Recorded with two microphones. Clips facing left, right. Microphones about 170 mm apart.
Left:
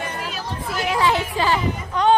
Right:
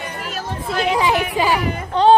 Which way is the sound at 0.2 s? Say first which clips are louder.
Right 2 dB; 50° right (ahead or behind).